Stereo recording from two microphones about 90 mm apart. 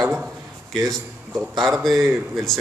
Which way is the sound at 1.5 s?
Centre (ahead or behind).